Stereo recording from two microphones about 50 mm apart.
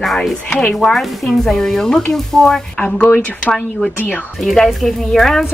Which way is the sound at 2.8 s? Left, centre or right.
Left.